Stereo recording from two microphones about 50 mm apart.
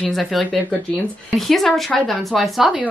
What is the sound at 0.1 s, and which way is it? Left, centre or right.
A woman's voice, centre.